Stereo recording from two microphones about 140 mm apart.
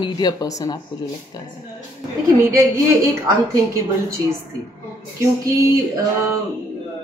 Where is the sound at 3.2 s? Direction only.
25° right (ahead or behind).